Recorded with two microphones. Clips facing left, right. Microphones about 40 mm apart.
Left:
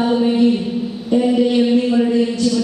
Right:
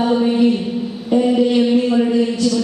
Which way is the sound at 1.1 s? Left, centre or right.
Centre.